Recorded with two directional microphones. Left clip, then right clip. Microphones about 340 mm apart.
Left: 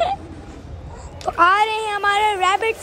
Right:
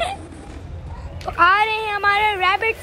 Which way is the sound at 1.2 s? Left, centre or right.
Centre.